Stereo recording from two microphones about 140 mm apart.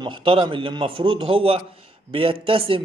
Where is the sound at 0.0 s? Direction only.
40° right (ahead or behind).